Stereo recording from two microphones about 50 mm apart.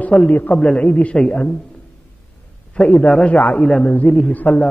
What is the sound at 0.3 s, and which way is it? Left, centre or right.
Speech, left.